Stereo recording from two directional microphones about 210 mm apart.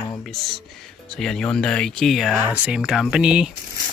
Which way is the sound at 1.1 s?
Centre (ahead or behind).